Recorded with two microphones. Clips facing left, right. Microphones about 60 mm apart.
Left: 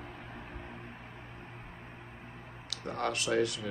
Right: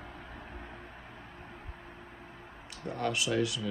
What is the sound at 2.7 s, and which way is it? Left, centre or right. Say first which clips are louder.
Speech: right 1 dB; left.